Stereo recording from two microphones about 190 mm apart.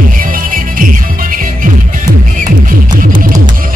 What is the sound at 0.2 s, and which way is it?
Music, 45° right (ahead or behind).